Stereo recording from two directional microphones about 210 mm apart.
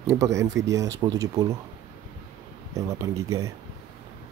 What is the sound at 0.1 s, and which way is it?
Speech, 15° right (ahead or behind).